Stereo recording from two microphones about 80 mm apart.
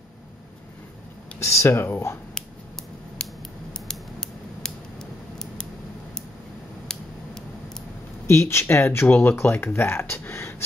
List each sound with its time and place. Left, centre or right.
1.4 s speech: left
3.7 s scissors: centre
6.9 s scissors: centre
8.3 s speech: left